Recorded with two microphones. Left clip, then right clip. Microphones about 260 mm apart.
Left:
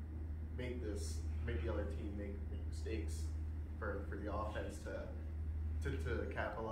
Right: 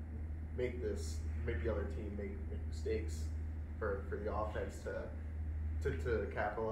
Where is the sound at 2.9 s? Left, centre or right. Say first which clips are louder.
Right 7 dB; right.